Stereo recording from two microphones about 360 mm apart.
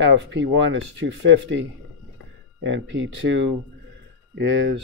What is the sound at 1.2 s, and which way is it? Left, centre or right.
Speech, right.